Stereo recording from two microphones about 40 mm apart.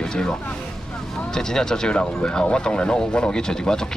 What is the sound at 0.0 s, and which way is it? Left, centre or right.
Vehicle, centre.